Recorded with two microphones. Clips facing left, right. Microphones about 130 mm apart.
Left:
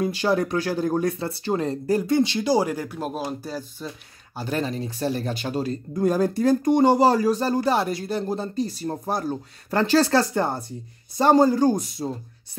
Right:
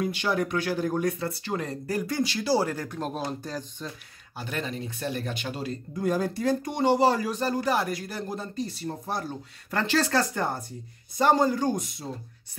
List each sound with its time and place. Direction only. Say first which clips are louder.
0.0 s speech: left 5 dB; 35° left (ahead or behind); by 3.9 s 5° left (ahead or behind)
4.4 s speech: left 6 dB; 35° left (ahead or behind)